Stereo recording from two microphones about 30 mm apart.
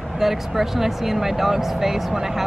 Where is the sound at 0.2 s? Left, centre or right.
Centre.